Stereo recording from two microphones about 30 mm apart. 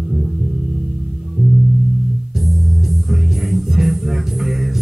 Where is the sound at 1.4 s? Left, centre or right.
Centre.